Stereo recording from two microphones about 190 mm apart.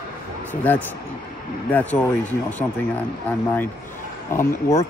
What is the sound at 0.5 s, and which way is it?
Speech, 10° left (ahead or behind).